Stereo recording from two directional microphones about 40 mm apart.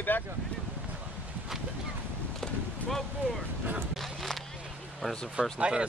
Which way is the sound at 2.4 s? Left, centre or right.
Centre.